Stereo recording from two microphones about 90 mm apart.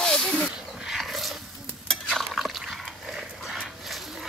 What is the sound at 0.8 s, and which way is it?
Roaring cats, centre (ahead or behind).